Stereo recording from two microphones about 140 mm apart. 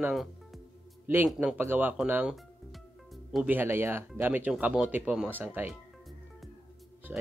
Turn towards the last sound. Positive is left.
turn(degrees=-10)  # may be behind; listen again after turning